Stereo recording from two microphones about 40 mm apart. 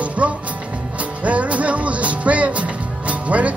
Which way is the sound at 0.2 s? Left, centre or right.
Right.